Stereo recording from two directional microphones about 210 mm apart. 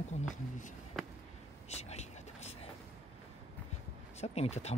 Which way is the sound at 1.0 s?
Centre (ahead or behind).